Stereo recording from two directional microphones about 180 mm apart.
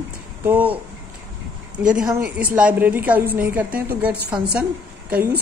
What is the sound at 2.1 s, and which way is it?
A woman's voice, 10° right (ahead or behind).